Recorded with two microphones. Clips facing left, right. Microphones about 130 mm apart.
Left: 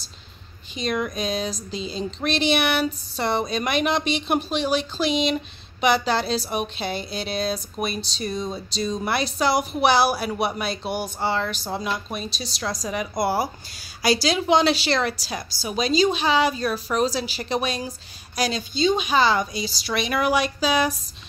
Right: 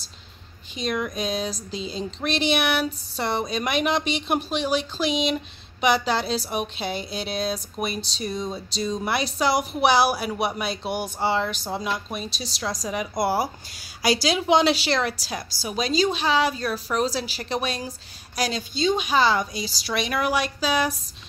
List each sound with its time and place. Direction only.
0.7 s a woman's voice: 5° right (ahead or behind)
11.6 s a woman's voice: centre (ahead or behind)